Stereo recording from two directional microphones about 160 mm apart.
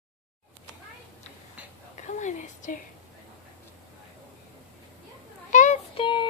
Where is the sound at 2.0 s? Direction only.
50° left (ahead or behind).